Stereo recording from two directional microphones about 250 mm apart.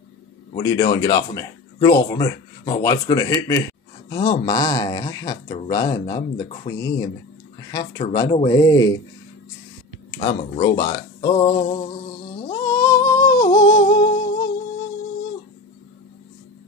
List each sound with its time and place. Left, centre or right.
0.6 s speech: centre
10.1 s speech: centre
12.4 s a sound: centre